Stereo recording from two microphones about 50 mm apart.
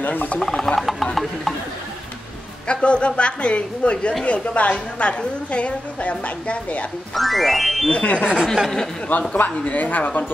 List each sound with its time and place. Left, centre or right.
0.0 s speech: left
0.4 s speech: centre
2.7 s a woman's voice: left
7.2 s speech: centre
7.9 s a woman's voice: left
8.2 s a sound: centre
9.3 s speech: left